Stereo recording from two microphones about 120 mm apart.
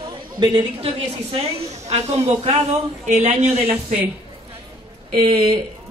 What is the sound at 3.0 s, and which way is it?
Speech, 75° right (ahead or behind).